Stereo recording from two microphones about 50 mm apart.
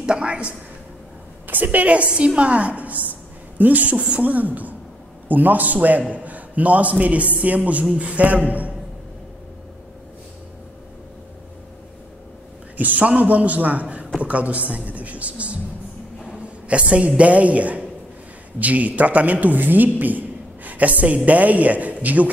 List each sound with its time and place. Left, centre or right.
0.0 s a man's voice: centre
1.5 s a man's voice: right
12.7 s a man's voice: right
16.3 s a sound: right
17.2 s a man's voice: right